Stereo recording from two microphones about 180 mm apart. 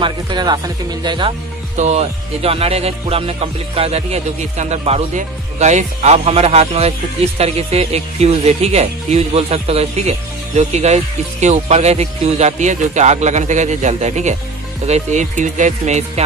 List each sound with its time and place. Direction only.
0.0 s speech: 25° right (ahead or behind)
1.8 s speech: 35° right (ahead or behind)